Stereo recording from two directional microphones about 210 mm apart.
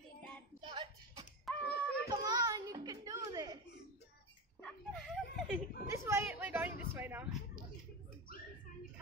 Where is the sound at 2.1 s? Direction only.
20° right (ahead or behind).